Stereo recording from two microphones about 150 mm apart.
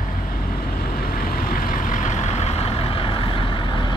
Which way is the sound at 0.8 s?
80° left.